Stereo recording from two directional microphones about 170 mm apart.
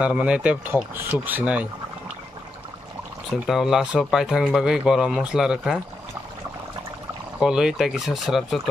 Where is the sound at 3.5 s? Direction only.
Centre (ahead or behind).